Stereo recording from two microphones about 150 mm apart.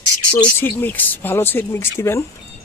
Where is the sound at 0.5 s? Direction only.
15° left (ahead or behind).